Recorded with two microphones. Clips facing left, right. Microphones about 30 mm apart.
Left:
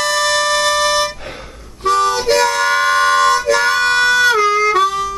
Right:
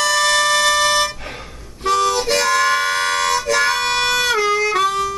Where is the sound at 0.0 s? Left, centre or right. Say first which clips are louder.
Even; centre.